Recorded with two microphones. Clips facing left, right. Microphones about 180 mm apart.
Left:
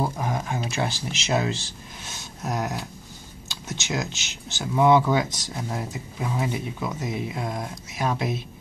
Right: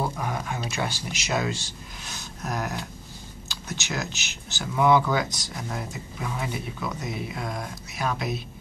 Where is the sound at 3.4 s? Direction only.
20° left (ahead or behind).